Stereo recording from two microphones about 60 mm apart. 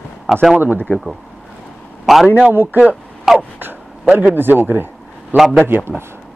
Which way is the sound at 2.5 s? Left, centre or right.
Right.